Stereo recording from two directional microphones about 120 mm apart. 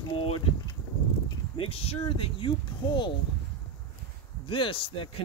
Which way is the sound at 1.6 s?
55° left (ahead or behind).